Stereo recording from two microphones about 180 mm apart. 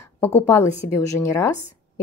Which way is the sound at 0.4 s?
15° left (ahead or behind).